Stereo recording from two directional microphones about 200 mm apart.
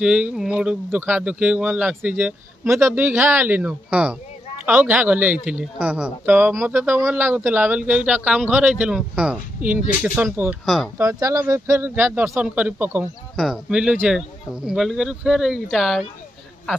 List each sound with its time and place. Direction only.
0.0 s speech: 5° right (ahead or behind)
11.0 s speech: 15° right (ahead or behind); by 16.1 s centre (ahead or behind)